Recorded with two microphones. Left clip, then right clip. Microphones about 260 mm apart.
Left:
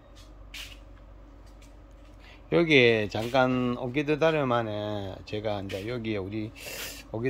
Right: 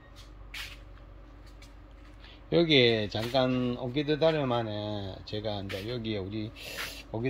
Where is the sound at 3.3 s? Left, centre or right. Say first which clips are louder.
Left 3 dB; left.